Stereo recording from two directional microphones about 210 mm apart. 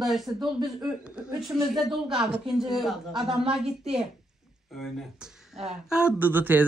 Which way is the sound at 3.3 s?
25° right (ahead or behind).